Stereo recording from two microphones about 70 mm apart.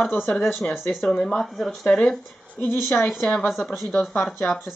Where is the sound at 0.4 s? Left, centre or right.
Centre.